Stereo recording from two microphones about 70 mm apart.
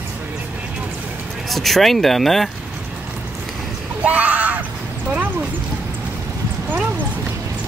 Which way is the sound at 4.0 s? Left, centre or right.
Right.